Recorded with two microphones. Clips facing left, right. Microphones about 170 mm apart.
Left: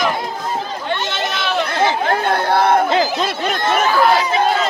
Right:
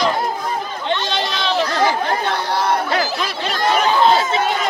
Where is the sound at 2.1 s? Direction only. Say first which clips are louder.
Left 4 dB; 50° left (ahead or behind).